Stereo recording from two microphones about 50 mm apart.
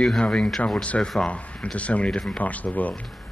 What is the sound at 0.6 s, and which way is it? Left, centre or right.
Speech, left.